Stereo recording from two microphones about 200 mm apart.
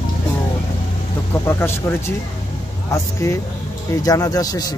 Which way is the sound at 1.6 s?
10° left (ahead or behind).